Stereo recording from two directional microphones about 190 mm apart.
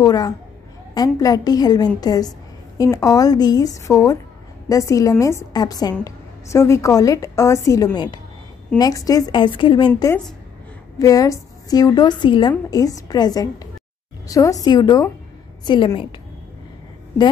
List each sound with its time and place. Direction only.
0.0 s a woman's voice: 20° left (ahead or behind)